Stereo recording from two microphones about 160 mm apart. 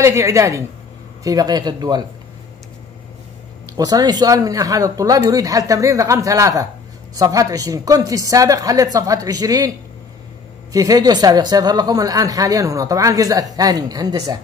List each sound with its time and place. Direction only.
0.0 s speech: 20° right (ahead or behind)
3.7 s speech: 25° right (ahead or behind)
10.7 s speech: 20° right (ahead or behind)